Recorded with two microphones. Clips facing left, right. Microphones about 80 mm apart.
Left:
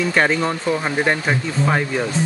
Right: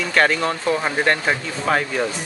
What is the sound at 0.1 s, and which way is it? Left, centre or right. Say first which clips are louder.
Speech: even; centre.